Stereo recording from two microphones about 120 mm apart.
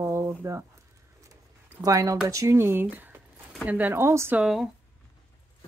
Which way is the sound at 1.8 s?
30° right (ahead or behind).